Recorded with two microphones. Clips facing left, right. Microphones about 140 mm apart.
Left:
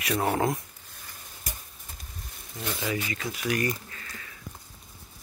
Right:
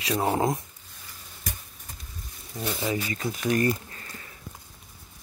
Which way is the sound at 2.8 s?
30° right (ahead or behind).